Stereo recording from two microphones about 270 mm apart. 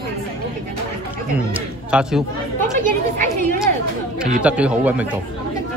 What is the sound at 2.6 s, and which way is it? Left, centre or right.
Chatter, right.